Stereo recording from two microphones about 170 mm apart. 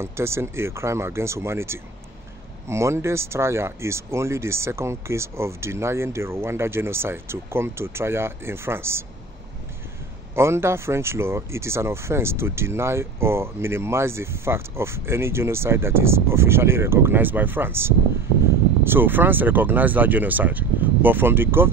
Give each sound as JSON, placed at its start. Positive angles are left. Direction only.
{"t": 0.0, "sound": "speech", "side_deg": -15}
{"t": 10.3, "sound": "speech", "side_deg": -15}